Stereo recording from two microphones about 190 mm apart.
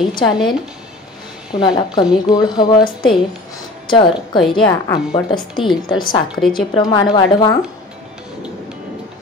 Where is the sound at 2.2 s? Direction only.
20° left (ahead or behind).